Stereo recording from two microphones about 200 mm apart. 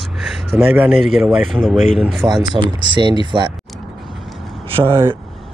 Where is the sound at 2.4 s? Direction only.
20° right (ahead or behind).